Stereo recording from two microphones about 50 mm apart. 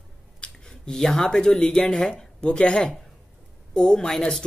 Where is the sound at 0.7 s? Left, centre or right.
Centre.